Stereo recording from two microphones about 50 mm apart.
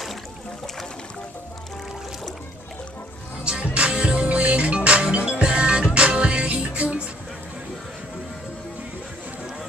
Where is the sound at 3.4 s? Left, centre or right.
Right.